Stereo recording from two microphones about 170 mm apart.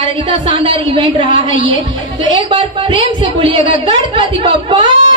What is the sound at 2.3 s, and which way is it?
A man's voice, 30° right (ahead or behind).